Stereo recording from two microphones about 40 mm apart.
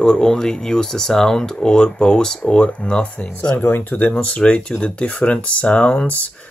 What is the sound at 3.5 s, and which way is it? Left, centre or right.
Speech, left.